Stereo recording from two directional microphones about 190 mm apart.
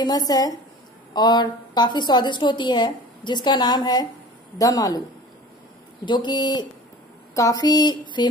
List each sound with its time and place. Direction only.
0.0 s a woman's voice: 20° left (ahead or behind)
6.0 s a woman's voice: 25° left (ahead or behind)